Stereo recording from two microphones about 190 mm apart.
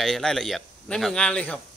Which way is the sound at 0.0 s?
Centre (ahead or behind).